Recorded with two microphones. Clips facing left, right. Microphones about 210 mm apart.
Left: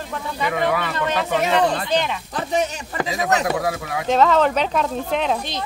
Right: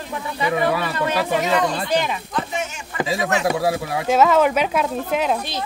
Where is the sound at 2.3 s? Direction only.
35° left (ahead or behind).